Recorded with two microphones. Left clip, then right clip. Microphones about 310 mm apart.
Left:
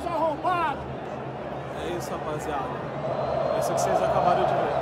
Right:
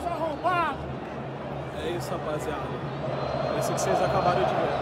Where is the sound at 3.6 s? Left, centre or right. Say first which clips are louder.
Left 3 dB; centre.